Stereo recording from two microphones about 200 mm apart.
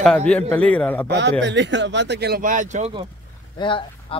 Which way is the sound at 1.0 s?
60° right (ahead or behind).